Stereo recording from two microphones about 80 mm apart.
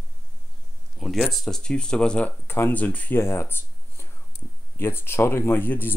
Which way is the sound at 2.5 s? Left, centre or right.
Left.